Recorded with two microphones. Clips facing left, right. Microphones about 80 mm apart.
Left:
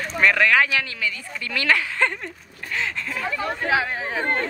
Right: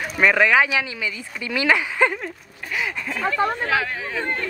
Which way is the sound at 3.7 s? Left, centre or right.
Centre.